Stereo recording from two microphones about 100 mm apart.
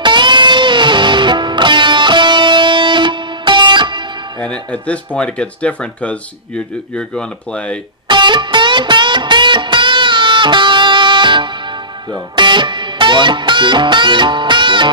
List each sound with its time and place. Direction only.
0.0 s music: 50° right (ahead or behind)
4.4 s speech: 15° left (ahead or behind)
8.1 s music: 50° right (ahead or behind)